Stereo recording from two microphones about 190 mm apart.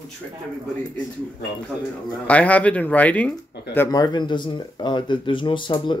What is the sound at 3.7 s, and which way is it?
Speech, 20° left (ahead or behind).